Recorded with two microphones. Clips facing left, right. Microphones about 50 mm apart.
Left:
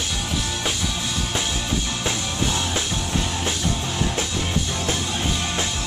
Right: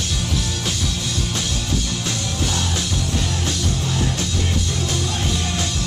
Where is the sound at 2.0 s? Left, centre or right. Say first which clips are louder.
Even; centre.